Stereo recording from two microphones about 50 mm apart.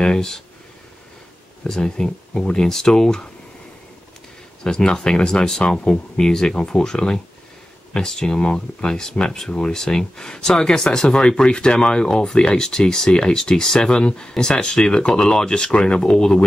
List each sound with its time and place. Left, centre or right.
0.0 s speech: centre
1.7 s speech: centre
4.6 s speech: centre